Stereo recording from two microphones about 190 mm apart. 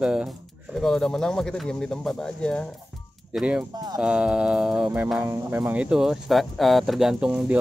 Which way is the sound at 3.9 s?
5° right (ahead or behind).